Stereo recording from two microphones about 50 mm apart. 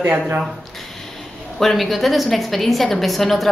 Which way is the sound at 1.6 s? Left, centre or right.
Centre.